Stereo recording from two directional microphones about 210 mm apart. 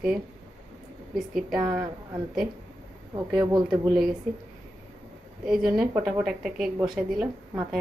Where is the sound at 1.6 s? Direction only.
15° right (ahead or behind).